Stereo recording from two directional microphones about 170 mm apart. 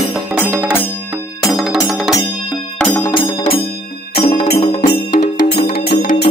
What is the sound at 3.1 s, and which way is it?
Music, 30° left (ahead or behind).